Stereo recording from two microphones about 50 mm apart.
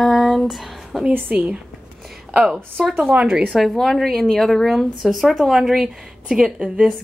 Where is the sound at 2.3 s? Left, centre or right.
Centre.